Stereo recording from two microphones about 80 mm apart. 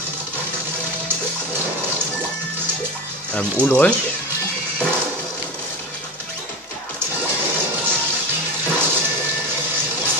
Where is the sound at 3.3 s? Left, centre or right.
Centre.